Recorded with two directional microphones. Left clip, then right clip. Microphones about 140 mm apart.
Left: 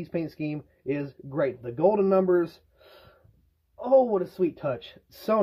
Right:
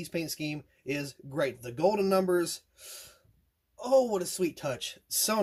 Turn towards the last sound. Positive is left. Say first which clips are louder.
# left 4 dB
turn(degrees=-20)  # may be behind; listen again after turning